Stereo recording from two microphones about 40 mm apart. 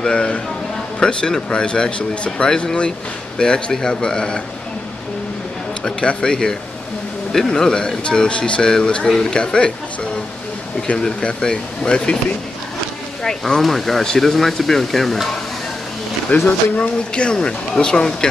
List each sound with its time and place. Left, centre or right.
0.0 s speech: left
5.9 s speech: left
11.0 s speech: centre
13.6 s speech: centre
16.4 s speech: left
17.1 s speech: left